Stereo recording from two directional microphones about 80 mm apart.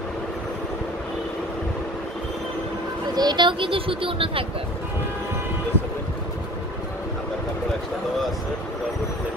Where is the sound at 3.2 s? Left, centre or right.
Right.